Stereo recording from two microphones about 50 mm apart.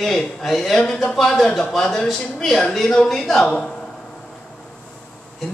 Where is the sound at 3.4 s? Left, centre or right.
Centre.